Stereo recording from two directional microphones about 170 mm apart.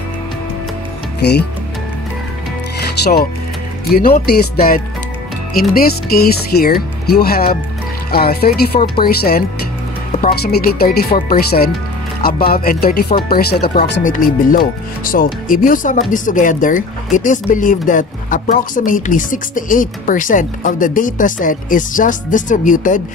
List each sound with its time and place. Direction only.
1.2 s speech: 80° left
2.8 s music: 70° left (ahead or behind)
3.9 s speech: 65° left (ahead or behind); by 14.0 s 80° left
14.0 s speech: 55° left (ahead or behind)